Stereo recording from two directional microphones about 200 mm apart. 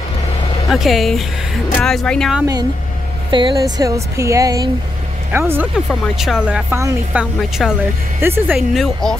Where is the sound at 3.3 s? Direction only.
20° right (ahead or behind).